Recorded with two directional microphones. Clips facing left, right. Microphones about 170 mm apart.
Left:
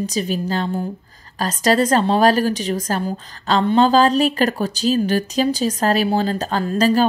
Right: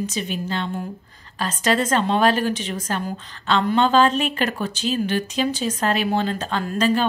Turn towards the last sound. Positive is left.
turn(degrees=40)  # may be behind; listen again after turning